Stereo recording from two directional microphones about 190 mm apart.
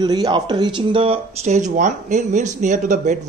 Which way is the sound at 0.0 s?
20° right (ahead or behind).